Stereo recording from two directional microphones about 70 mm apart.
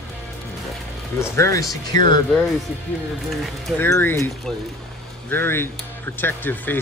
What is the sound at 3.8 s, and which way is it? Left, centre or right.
Speech, left.